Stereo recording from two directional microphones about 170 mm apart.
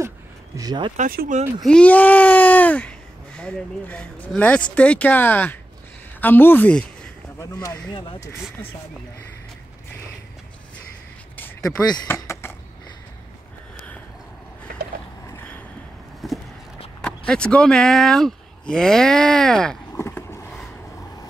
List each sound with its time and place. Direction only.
0.6 s speech: 25° right (ahead or behind)
0.9 s speech: 55° right (ahead or behind)
1.6 s speech: 5° left (ahead or behind)
7.9 s speech: 30° left (ahead or behind)
11.3 s a sound: 10° left (ahead or behind)
12.1 s chop: 15° left (ahead or behind)
15.2 s a sound: 15° left (ahead or behind)
16.2 s a sound: centre (ahead or behind)
17.3 s speech: 5° left (ahead or behind)
19.9 s vehicle: 15° left (ahead or behind)